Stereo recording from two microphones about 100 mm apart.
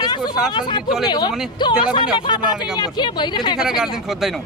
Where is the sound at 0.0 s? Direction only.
45° left (ahead or behind).